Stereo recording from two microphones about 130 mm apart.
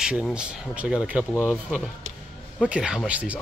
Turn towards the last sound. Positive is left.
turn(degrees=-10)  # may be behind; listen again after turning